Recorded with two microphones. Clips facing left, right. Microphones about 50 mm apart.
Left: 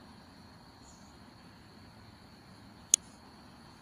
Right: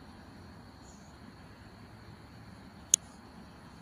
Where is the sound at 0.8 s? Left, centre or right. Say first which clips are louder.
Right 2 dB; right.